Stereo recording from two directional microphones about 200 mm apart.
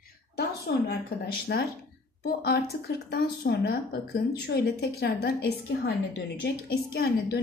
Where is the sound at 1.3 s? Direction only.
55° left (ahead or behind).